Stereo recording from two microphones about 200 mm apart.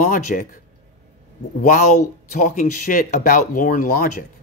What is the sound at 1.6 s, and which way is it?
Speech, 40° left (ahead or behind).